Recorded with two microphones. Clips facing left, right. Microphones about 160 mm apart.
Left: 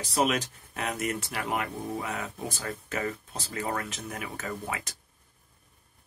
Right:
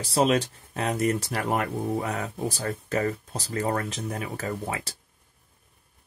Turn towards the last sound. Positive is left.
turn(degrees=-30)  # may be behind; listen again after turning